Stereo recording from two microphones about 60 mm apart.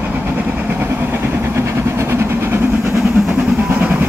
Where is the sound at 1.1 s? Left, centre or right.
Right.